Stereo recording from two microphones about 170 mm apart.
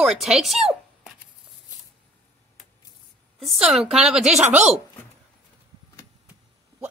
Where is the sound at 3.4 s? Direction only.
Centre (ahead or behind).